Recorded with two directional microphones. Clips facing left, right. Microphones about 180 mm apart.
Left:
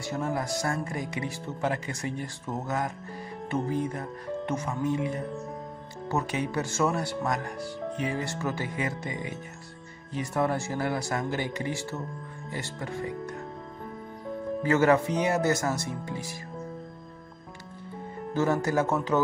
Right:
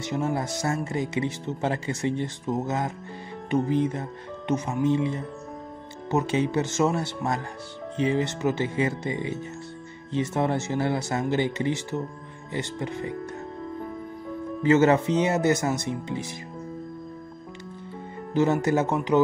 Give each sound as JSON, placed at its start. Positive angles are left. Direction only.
{"t": 0.0, "sound": "speech", "side_deg": -25}
{"t": 14.6, "sound": "speech", "side_deg": -25}
{"t": 18.3, "sound": "speech", "side_deg": -20}